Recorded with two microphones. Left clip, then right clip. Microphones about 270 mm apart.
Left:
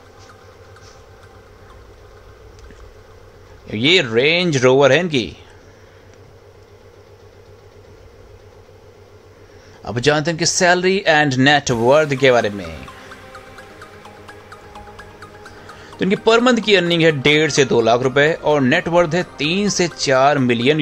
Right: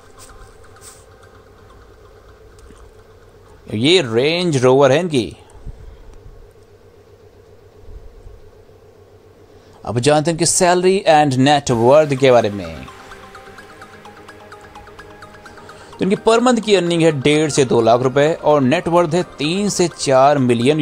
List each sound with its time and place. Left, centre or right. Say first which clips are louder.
3.6 s speech: even; centre
9.8 s speech: right 2 dB; centre
13.3 s music: even; centre
16.3 s speech: even; centre